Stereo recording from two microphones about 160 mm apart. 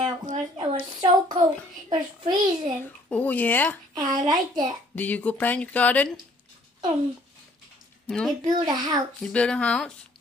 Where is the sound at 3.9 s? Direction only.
25° right (ahead or behind).